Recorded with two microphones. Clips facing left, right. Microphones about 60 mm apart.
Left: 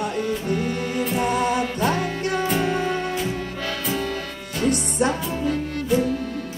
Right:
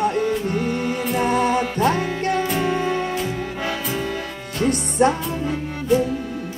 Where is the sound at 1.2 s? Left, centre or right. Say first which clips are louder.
Right 3 dB; right.